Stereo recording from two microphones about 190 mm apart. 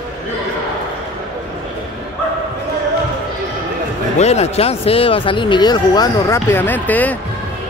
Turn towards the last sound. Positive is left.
turn(degrees=10)  # may be behind; listen again after turning